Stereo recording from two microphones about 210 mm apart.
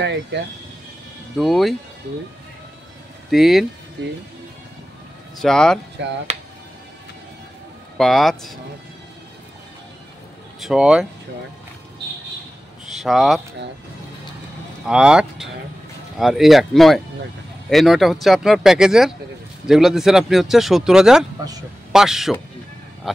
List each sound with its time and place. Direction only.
0.0 s speech: 55° right (ahead or behind)
1.3 s speech: centre (ahead or behind)
3.3 s speech: centre (ahead or behind)
5.4 s speech: centre (ahead or behind)
6.0 s speech: 55° right (ahead or behind)
8.0 s speech: centre (ahead or behind)
10.6 s speech: 5° right (ahead or behind)
12.9 s speech: centre (ahead or behind)
14.9 s speech: 5° right (ahead or behind)